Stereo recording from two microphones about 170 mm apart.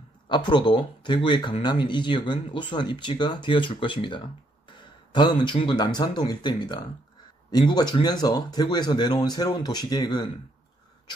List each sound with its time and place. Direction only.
0.3 s speech: 25° left (ahead or behind)